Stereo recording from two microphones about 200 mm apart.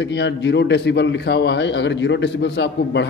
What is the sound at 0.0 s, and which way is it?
A man's voice, 60° left (ahead or behind).